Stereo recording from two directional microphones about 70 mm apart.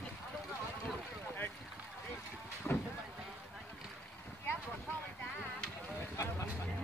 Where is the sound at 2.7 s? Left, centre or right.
Centre.